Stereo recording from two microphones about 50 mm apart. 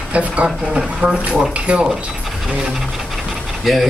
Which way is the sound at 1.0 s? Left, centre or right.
Right.